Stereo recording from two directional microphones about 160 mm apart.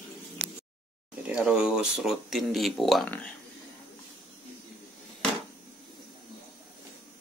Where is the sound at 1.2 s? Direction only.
5° right (ahead or behind).